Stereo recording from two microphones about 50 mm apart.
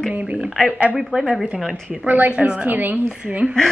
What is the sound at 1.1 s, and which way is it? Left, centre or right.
Speech, centre.